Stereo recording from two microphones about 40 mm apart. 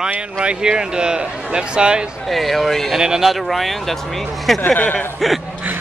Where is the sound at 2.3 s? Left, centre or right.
Centre.